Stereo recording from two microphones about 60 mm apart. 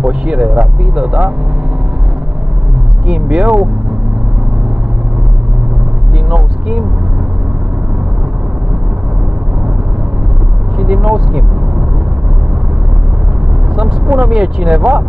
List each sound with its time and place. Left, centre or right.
0.2 s speech: centre
3.1 s speech: centre
6.3 s speech: centre
10.8 s vehicle: centre
14.0 s speech: right